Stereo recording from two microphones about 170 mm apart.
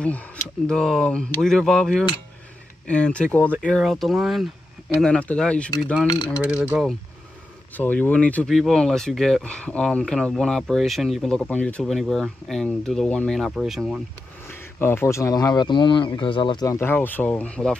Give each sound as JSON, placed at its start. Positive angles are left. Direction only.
{"t": 0.7, "sound": "speech", "side_deg": 5}
{"t": 6.0, "sound": "speech", "side_deg": 25}
{"t": 6.4, "sound": "cutlery", "side_deg": -10}
{"t": 7.7, "sound": "speech", "side_deg": 10}
{"t": 14.5, "sound": "speech", "side_deg": 15}